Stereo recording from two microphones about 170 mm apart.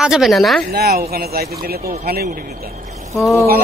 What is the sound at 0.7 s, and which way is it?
A man's voice, 65° right (ahead or behind).